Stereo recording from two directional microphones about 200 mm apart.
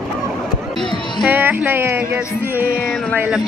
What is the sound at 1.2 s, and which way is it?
Music, 10° right (ahead or behind).